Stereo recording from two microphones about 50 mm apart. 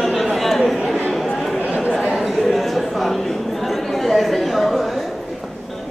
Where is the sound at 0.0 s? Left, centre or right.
Centre.